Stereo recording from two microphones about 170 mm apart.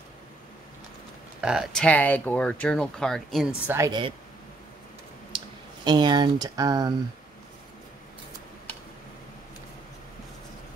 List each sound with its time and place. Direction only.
1.4 s speech: 5° right (ahead or behind)
3.6 s a woman's voice: 15° right (ahead or behind)
5.3 s a sound: 30° right (ahead or behind)
5.9 s speech: 25° right (ahead or behind)